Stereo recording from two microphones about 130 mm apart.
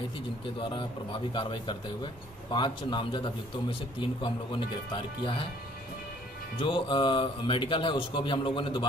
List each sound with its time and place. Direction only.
0.6 s a man's voice: 40° left (ahead or behind)
6.6 s a man's voice: 40° left (ahead or behind)